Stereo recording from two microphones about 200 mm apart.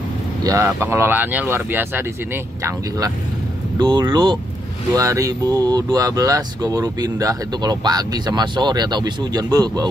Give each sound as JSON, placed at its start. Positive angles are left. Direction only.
{"t": 0.4, "sound": "speech", "side_deg": -15}